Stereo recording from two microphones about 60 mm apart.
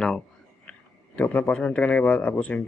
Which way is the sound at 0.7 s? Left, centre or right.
Left.